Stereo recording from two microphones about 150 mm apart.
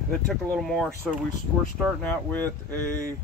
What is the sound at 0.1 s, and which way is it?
Speech, 5° left (ahead or behind).